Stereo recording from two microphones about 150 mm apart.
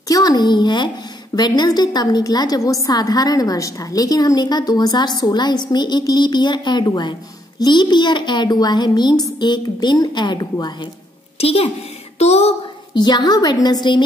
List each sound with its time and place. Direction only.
0.1 s a woman's voice: 25° left (ahead or behind)
11.3 s a woman's voice: 40° left (ahead or behind)
12.9 s a woman's voice: 30° left (ahead or behind)